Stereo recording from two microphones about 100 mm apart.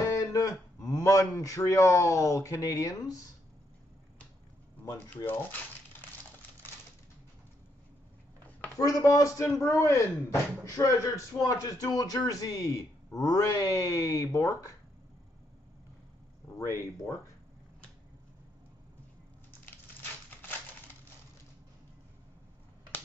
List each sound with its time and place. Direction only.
0.0 s speech: 35° left (ahead or behind)
4.9 s speech: 20° left (ahead or behind)
8.7 s speech: 35° left (ahead or behind)
16.4 s a sound: 30° left (ahead or behind)